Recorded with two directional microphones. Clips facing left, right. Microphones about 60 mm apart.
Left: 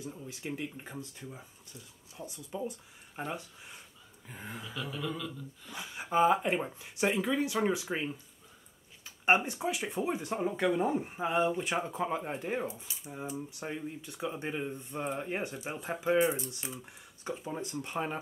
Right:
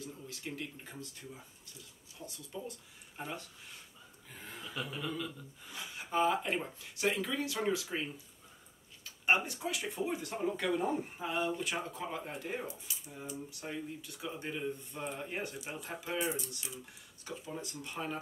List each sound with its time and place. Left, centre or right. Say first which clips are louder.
0.0 s speech: left 3 dB; centre
4.7 s speech: left 1 dB; centre
5.8 s speech: left 5 dB; left